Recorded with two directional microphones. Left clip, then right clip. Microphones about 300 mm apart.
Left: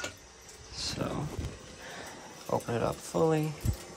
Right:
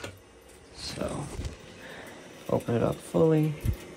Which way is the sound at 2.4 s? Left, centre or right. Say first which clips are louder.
Right 3 dB; right.